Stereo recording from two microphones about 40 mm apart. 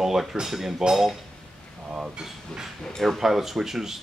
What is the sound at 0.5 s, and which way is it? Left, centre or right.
Speech, centre.